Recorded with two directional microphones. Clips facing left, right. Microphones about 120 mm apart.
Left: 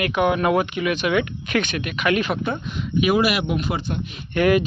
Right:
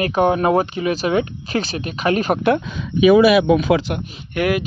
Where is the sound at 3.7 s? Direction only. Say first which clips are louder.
Right 8 dB; 90° right.